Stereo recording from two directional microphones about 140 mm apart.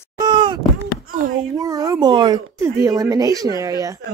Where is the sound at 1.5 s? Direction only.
25° right (ahead or behind).